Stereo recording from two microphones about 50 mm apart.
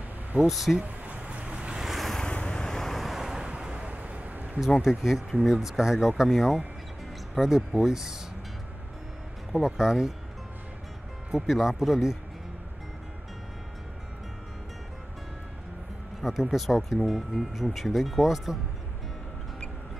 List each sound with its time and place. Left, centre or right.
0.5 s speech: centre
0.8 s boat: right
1.8 s boat: centre
2.1 s vehicle: centre
3.2 s waves: centre; by 4.5 s right
4.8 s speech: centre
9.5 s speech: centre
11.3 s speech: centre
16.2 s speech: centre